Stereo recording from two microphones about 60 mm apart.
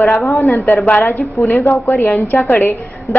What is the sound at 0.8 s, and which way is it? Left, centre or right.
Speech, left.